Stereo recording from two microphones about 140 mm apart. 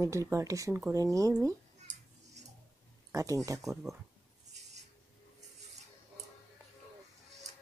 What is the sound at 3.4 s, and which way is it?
Speech, 25° right (ahead or behind).